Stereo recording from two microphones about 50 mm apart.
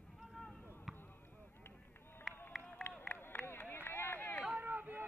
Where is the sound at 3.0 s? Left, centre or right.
Left.